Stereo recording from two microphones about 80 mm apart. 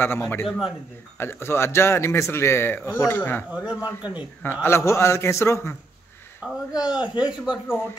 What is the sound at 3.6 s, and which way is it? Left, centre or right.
Speech, centre.